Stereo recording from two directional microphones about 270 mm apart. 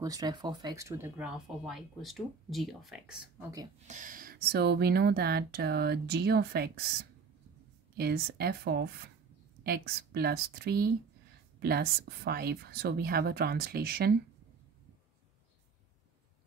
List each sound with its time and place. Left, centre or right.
0.0 s speech: centre
3.8 s speech: right
7.9 s speech: right